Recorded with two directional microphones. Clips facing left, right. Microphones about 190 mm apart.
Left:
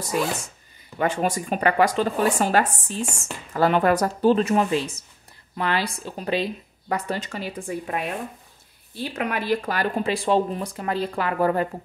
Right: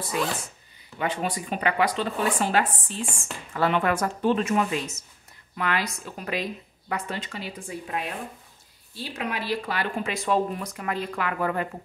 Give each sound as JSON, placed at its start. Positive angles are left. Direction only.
{"t": 0.9, "sound": "speech", "side_deg": 45}